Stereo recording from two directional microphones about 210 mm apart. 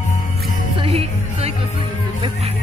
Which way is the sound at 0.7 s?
30° right (ahead or behind).